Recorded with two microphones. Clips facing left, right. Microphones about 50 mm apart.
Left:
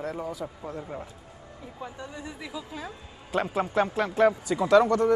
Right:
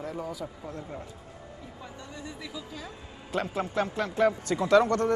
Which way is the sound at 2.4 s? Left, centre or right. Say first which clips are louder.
Left 3 dB; left.